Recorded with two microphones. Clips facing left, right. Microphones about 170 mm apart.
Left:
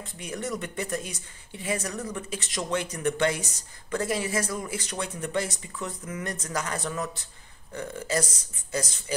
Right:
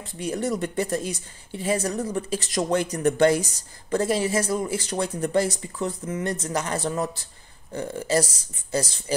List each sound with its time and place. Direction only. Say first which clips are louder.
0.0 s speech: right 7 dB; 30° right (ahead or behind)